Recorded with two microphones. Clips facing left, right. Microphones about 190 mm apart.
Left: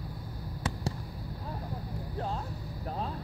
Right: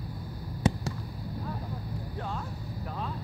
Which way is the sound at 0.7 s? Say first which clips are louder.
Right 9 dB; 20° right (ahead or behind).